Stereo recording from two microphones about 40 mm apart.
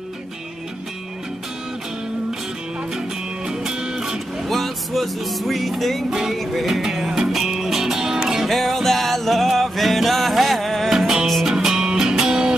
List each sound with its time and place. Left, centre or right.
3.4 s music: centre
4.5 s music: centre
6.0 s music: centre
6.3 s music: centre
6.7 s music: centre
8.5 s music: centre
10.9 s music: centre